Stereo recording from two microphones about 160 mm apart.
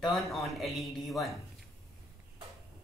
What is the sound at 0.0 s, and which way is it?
Speech, centre (ahead or behind).